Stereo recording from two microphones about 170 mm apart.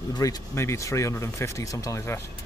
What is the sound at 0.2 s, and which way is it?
Speech, 15° left (ahead or behind).